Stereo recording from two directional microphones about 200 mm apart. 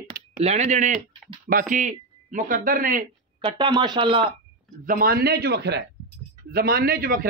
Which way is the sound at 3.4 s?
25° right (ahead or behind).